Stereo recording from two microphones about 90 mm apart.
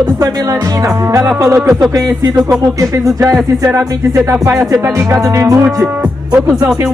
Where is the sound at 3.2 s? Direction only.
35° right (ahead or behind).